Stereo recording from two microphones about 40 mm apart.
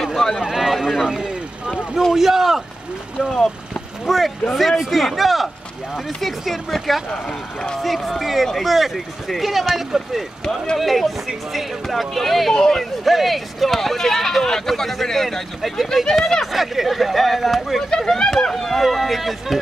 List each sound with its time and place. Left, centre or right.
0.0 s a sound: centre
0.4 s vehicle: centre
2.1 s speech: centre
3.2 s speech: centre
7.1 s speech: left
7.8 s speech: centre
17.8 s speech: centre